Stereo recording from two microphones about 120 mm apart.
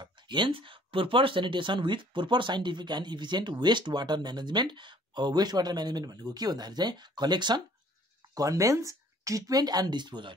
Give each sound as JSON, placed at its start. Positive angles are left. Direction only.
{"t": 0.0, "sound": "speech", "side_deg": -40}